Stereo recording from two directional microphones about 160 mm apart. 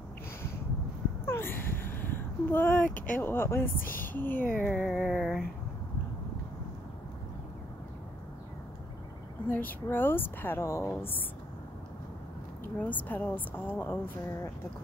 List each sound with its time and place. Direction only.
1.2 s a sound: 15° left (ahead or behind)
3.2 s speech: 15° left (ahead or behind)
3.7 s speech: 60° left (ahead or behind)
4.0 s speech: 10° left (ahead or behind)
4.7 s a sound: 5° left (ahead or behind)
9.5 s speech: 10° left (ahead or behind)
12.6 s speech: 10° left (ahead or behind)